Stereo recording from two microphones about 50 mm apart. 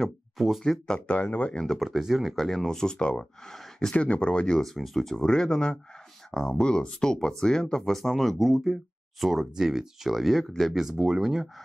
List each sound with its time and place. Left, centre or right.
0.0 s speech: centre
1.0 s speech: left
1.8 s speech: centre
2.3 s speech: centre
3.9 s speech: left
4.6 s speech: centre